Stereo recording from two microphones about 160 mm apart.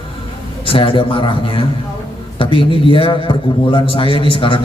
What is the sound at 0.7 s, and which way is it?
A man's voice, 35° left (ahead or behind).